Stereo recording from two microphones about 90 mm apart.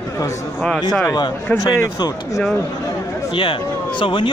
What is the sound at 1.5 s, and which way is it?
Speech, 40° left (ahead or behind).